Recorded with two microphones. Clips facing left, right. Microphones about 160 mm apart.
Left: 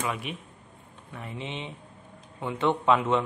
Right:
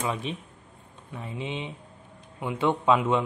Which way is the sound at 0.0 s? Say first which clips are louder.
Right 2 dB; 25° right (ahead or behind).